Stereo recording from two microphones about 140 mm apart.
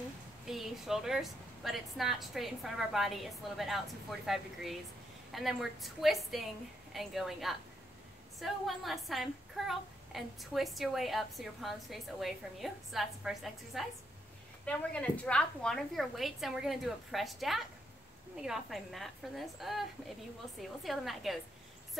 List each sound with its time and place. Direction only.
0.5 s a woman's voice: centre (ahead or behind)
14.6 s a woman's voice: 10° left (ahead or behind)